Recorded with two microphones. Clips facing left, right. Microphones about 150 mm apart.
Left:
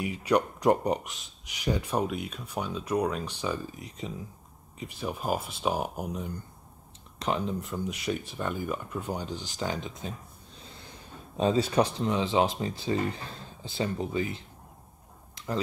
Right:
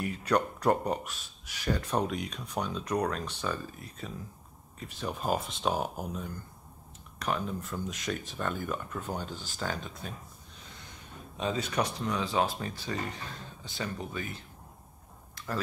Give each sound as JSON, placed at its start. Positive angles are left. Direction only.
{"t": 0.0, "sound": "speech", "side_deg": 10}
{"t": 10.6, "sound": "speech", "side_deg": 30}
{"t": 15.3, "sound": "a sound", "side_deg": 20}